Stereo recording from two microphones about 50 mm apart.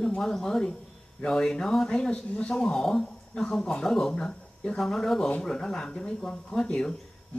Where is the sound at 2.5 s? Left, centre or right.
Centre.